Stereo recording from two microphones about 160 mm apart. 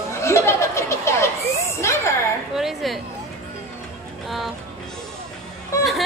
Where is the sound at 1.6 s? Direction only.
15° left (ahead or behind).